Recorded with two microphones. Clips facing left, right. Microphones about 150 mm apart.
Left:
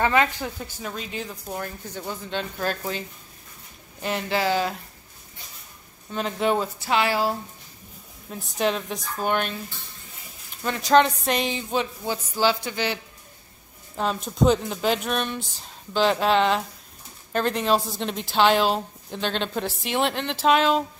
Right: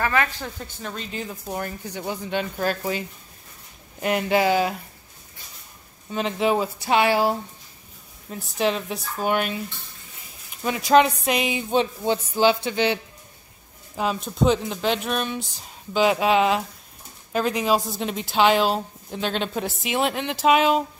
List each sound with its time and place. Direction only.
0.0 s a woman's voice: 20° left (ahead or behind); by 3.0 s 5° right (ahead or behind)
4.0 s a woman's voice: 15° right (ahead or behind)
6.1 s a woman's voice: 5° right (ahead or behind)
6.8 s speech: 20° right (ahead or behind)
8.3 s a woman's voice: centre (ahead or behind)
10.6 s a woman's voice: 10° right (ahead or behind)
11.7 s speech: 25° right (ahead or behind)
13.9 s a woman's voice: centre (ahead or behind)